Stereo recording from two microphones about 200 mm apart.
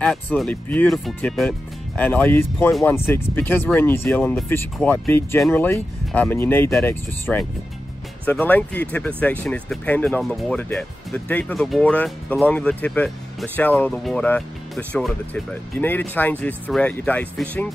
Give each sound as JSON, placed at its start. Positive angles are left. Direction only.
{"t": 0.0, "sound": "speech", "side_deg": 5}